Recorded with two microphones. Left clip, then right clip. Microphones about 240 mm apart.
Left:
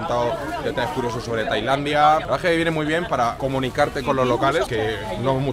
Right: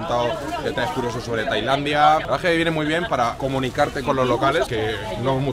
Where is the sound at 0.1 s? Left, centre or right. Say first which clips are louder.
Right 1 dB; centre.